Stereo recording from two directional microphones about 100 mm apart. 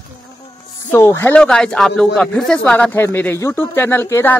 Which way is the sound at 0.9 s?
25° left (ahead or behind).